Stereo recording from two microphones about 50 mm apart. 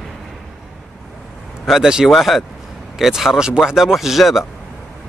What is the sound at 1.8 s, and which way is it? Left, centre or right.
Speech, centre.